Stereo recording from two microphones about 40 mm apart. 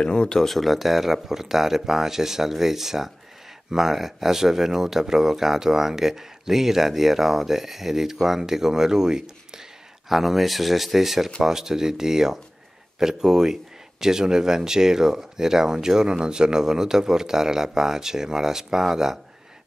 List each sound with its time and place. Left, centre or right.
0.0 s speech: left
0.5 s speech: centre
10.0 s speech: centre